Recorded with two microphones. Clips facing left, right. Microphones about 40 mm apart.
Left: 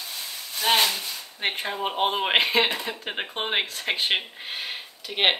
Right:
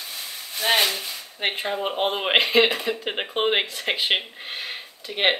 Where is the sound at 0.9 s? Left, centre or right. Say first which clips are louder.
Right 1 dB; centre.